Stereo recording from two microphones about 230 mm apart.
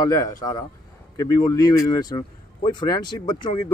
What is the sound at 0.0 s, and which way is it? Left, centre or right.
Speech, centre.